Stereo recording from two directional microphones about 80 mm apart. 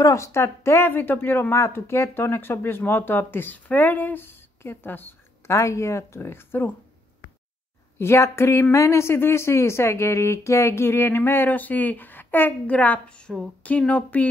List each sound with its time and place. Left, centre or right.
0.0 s speech: left
5.5 s speech: left
8.0 s speech: left; by 14.2 s centre